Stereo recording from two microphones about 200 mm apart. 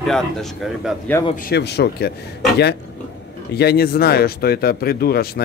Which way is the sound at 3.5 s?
50° left (ahead or behind).